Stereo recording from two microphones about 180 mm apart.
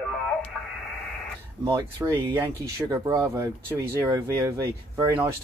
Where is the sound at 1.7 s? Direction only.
20° right (ahead or behind).